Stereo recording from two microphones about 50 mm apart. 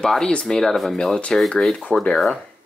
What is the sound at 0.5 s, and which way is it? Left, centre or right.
Speech, centre.